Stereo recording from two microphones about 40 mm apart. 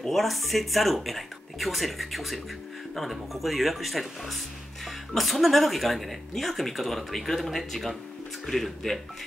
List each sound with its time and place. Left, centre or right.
0.1 s speech: centre